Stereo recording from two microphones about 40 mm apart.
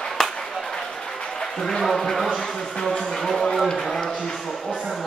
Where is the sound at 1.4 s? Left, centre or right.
Centre.